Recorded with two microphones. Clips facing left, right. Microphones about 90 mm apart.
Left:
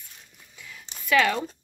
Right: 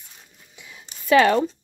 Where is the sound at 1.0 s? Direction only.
40° right (ahead or behind).